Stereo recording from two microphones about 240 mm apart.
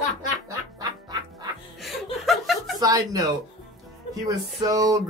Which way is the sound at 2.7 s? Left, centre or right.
Centre.